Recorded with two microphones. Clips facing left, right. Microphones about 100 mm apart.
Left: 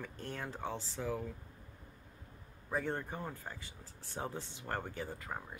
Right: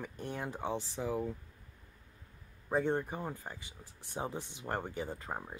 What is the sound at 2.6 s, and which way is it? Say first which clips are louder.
Speech: right 5 dB; 20° right (ahead or behind).